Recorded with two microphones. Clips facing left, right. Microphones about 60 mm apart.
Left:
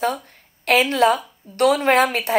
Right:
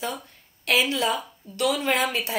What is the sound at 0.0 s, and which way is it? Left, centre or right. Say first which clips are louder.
A woman's voice: left 9 dB; left.